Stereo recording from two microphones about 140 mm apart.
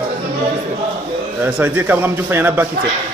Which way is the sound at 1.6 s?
15° right (ahead or behind).